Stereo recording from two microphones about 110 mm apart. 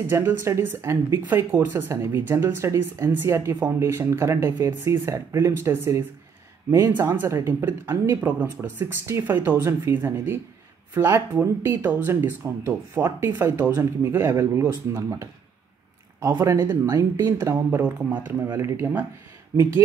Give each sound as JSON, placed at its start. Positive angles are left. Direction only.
{"t": 0.0, "sound": "speech", "side_deg": -20}